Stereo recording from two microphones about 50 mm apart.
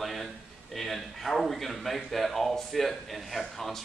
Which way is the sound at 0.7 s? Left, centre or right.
Centre.